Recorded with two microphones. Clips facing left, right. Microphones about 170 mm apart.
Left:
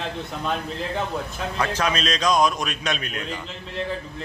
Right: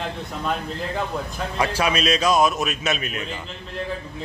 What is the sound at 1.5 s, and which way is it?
A man's voice, 10° right (ahead or behind).